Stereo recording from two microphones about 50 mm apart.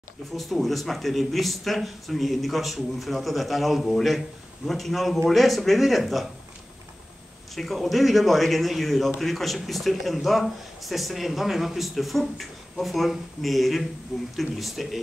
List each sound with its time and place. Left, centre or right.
0.4 s a man's voice: centre
7.5 s a man's voice: centre